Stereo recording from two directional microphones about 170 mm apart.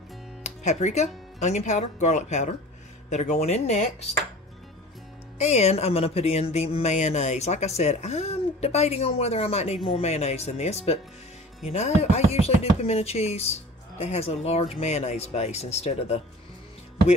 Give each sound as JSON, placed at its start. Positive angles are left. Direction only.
{"t": 0.4, "sound": "speech", "side_deg": 40}
{"t": 3.1, "sound": "chopping", "side_deg": 40}
{"t": 5.4, "sound": "chopping", "side_deg": 40}